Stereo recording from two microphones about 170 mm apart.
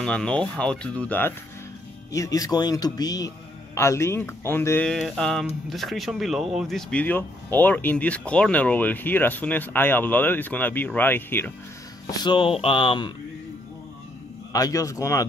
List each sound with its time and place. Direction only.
0.0 s speech: 5° left (ahead or behind)
2.1 s speech: 20° left (ahead or behind)
12.1 s speech: 25° left (ahead or behind)
14.5 s speech: 20° left (ahead or behind)